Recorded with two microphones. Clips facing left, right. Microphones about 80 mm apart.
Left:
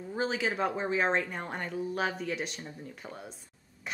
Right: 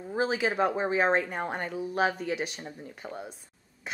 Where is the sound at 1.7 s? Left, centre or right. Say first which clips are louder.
Right 3 dB; centre.